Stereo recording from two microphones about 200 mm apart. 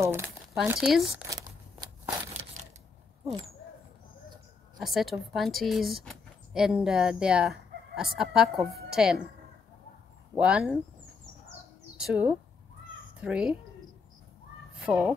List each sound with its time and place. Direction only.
0.0 s speech: 10° right (ahead or behind)
1.3 s a sound: 15° right (ahead or behind)
4.7 s speech: centre (ahead or behind)
10.3 s speech: 5° right (ahead or behind)
12.0 s speech: 5° right (ahead or behind)
14.8 s speech: 5° right (ahead or behind)